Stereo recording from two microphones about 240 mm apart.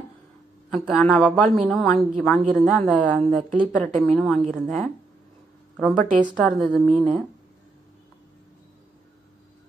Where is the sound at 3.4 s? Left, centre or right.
Right.